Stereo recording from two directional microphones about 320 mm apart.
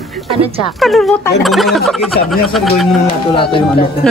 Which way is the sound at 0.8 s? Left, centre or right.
Centre.